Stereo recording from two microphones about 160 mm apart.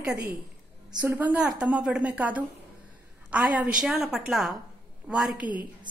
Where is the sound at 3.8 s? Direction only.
5° right (ahead or behind).